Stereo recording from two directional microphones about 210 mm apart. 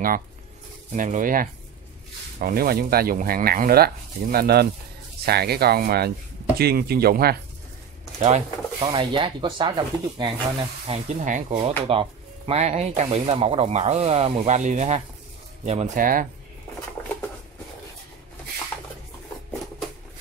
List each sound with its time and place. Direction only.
0.9 s speech: 35° right (ahead or behind)
8.2 s speech: 30° right (ahead or behind)
11.1 s speech: 35° right (ahead or behind)
11.5 s speech: 25° right (ahead or behind)